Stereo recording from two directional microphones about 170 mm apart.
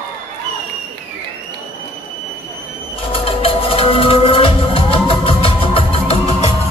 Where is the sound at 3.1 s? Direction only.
35° left (ahead or behind).